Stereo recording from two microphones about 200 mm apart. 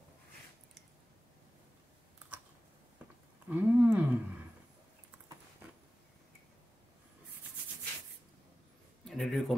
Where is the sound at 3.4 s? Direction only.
10° right (ahead or behind).